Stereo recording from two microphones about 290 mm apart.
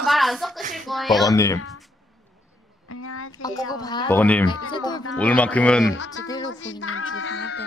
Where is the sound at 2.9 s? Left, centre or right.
Left.